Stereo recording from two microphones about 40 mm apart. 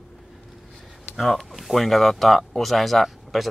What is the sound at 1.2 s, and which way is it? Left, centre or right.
Speech, centre.